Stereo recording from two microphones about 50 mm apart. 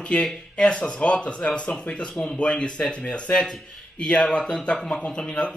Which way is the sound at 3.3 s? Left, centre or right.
Centre.